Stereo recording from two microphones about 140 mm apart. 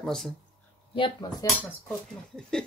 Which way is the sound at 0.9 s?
30° left (ahead or behind).